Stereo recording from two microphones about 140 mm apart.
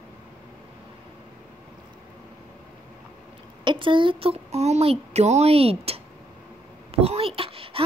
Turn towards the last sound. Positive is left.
turn(degrees=-40)  # may be behind; listen again after turning